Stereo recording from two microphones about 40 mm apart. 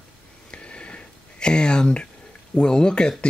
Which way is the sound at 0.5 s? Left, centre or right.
Left.